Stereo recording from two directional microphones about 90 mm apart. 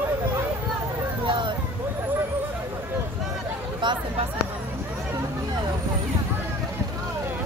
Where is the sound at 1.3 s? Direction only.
60° right (ahead or behind).